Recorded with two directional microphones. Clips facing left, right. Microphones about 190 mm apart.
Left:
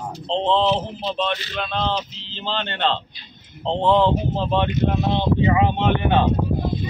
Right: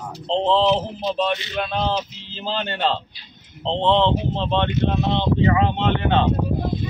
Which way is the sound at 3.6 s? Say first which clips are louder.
Left 1 dB; 5° left (ahead or behind).